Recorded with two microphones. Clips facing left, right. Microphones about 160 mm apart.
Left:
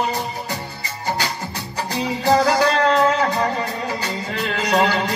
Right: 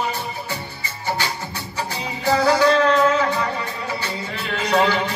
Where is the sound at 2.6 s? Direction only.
35° left (ahead or behind).